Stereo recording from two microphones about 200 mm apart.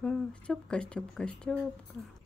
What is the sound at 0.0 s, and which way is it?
Speech, 5° left (ahead or behind).